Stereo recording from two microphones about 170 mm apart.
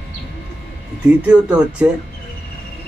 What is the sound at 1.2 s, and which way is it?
Speech, 5° right (ahead or behind).